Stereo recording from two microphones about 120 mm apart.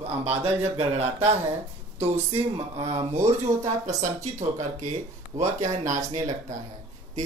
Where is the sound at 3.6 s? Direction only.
75° right (ahead or behind).